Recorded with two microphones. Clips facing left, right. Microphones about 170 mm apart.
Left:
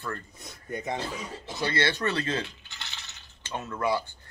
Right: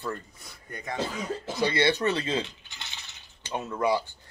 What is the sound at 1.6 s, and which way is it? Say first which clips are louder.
Speech: right 3 dB; 15° right (ahead or behind).